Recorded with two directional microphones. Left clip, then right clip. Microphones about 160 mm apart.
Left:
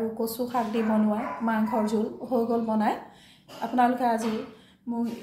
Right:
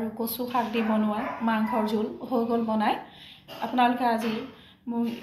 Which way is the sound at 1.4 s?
50° left (ahead or behind).